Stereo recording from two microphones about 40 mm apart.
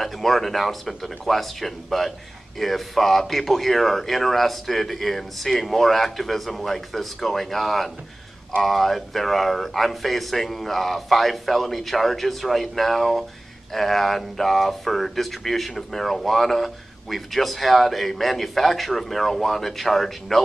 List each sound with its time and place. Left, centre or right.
0.0 s speech: centre